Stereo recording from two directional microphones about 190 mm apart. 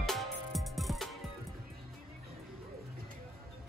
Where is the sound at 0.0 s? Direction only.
Centre (ahead or behind).